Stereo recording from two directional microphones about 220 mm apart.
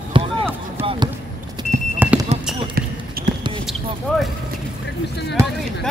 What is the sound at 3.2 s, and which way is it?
Basketball bounce, 45° right (ahead or behind).